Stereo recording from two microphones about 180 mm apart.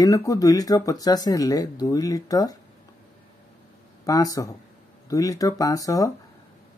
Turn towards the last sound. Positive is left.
turn(degrees=20)  # may be behind; listen again after turning